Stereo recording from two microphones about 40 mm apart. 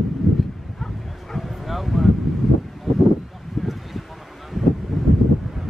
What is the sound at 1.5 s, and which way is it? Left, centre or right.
Bow-wow, centre.